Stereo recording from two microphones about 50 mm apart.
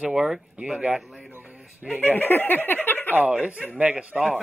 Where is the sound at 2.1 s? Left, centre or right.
Left.